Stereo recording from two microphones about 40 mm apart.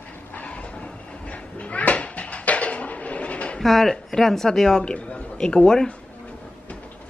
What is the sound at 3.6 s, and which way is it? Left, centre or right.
Speech, centre.